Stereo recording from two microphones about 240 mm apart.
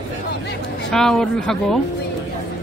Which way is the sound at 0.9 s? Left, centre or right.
Centre.